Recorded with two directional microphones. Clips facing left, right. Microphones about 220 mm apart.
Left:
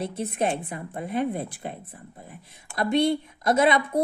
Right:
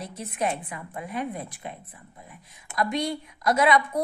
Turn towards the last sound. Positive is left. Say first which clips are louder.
# left 1 dB
turn(degrees=25)  # may be behind; listen again after turning